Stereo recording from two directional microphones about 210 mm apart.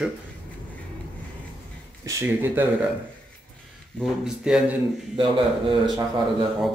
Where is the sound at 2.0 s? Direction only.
10° right (ahead or behind).